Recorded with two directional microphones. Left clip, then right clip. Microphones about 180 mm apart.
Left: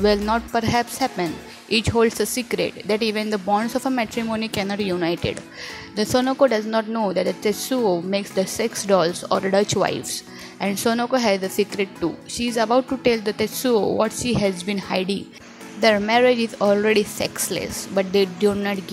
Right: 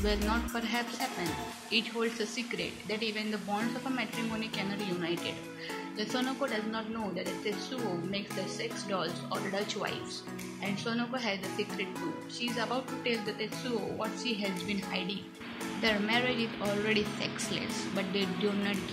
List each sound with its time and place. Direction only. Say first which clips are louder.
0.0 s speech: left 13 dB; 55° left (ahead or behind)